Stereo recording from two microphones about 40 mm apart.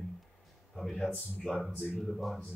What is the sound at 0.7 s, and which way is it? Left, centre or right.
Speech, centre.